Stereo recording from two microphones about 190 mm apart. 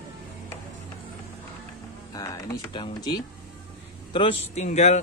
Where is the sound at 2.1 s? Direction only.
20° left (ahead or behind).